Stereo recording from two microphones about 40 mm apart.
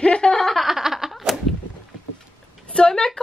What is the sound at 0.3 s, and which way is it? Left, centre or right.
Snicker, centre.